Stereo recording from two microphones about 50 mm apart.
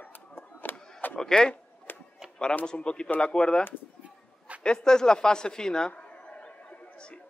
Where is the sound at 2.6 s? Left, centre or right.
Centre.